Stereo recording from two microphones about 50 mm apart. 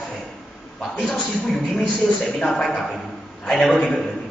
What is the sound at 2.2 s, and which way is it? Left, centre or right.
Speech, centre.